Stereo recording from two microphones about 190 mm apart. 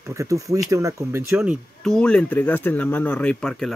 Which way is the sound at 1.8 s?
5° left (ahead or behind).